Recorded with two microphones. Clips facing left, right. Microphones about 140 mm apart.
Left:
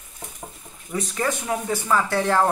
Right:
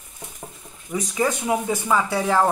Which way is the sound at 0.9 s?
10° right (ahead or behind).